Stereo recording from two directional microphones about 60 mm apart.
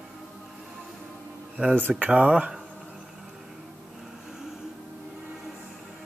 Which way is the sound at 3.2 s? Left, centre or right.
Centre.